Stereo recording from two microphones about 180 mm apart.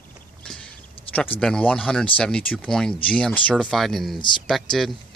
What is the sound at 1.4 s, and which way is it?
Speech, 5° left (ahead or behind).